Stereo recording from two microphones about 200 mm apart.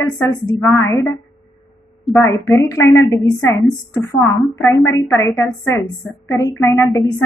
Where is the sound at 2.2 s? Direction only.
15° left (ahead or behind).